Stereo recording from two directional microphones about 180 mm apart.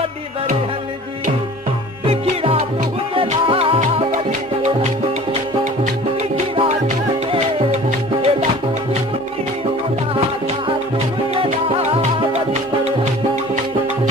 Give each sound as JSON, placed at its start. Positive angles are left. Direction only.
{"t": 3.2, "sound": "music", "side_deg": -30}
{"t": 6.3, "sound": "music", "side_deg": -30}
{"t": 11.9, "sound": "music", "side_deg": -35}